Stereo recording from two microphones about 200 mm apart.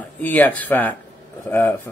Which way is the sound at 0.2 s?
10° left (ahead or behind).